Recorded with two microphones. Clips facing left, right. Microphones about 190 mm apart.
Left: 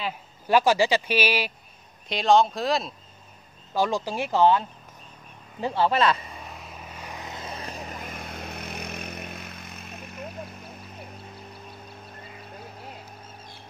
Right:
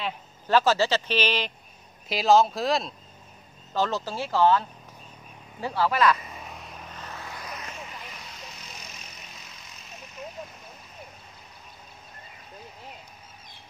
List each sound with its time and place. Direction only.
0.5 s speech: 15° left (ahead or behind)
2.0 s speech: 5° right (ahead or behind)
3.7 s speech: 10° left (ahead or behind)
6.3 s vehicle: centre (ahead or behind); by 10.2 s 55° left (ahead or behind)